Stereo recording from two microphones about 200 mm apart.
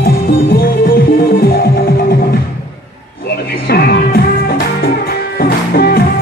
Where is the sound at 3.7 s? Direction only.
50° left (ahead or behind).